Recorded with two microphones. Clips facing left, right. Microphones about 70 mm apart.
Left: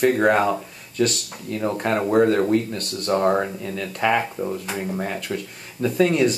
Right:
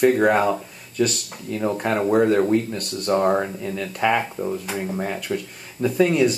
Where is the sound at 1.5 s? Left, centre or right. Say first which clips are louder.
Even; centre.